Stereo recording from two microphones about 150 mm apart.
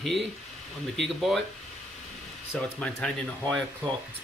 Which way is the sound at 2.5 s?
5° left (ahead or behind).